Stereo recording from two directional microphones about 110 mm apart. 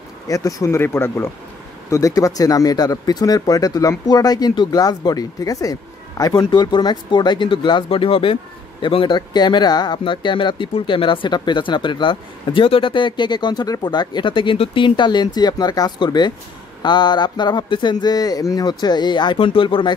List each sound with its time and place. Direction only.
0.3 s speech: 30° left (ahead or behind); by 19.9 s 50° left (ahead or behind)